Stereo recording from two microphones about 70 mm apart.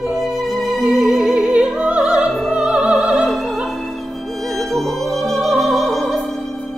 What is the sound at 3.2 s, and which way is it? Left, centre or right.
Opera, centre.